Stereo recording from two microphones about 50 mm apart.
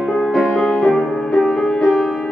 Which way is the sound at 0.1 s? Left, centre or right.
Centre.